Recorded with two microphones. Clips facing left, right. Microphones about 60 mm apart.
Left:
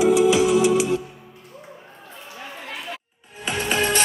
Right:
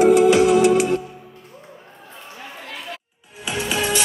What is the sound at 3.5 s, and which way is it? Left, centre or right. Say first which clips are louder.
Music: even; left.